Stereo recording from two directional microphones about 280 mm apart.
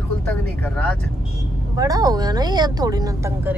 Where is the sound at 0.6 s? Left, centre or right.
Centre.